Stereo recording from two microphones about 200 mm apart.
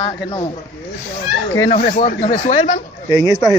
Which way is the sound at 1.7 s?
40° left (ahead or behind).